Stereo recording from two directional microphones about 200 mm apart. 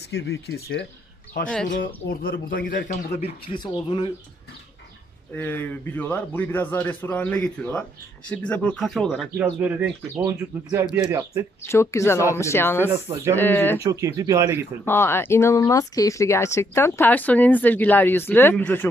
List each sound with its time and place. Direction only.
0.1 s speech: 55° left (ahead or behind)
2.0 s a man's voice: 50° left (ahead or behind); by 4.1 s 25° left (ahead or behind)
5.3 s speech: 10° left (ahead or behind); by 11.4 s 15° right (ahead or behind)
11.6 s speech: 15° left (ahead or behind)
13.1 s speech: 15° right (ahead or behind)
13.4 s speech: 10° left (ahead or behind)
13.8 s speech: 15° right (ahead or behind)
14.9 s speech: 10° left (ahead or behind)